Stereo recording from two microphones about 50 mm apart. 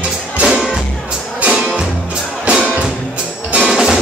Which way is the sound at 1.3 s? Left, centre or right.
Right.